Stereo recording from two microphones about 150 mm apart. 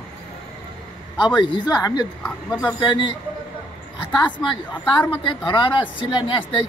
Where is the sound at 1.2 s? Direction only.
30° left (ahead or behind).